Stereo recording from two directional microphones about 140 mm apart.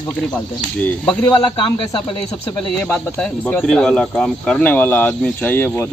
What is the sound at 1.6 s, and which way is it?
Speech, 35° left (ahead or behind).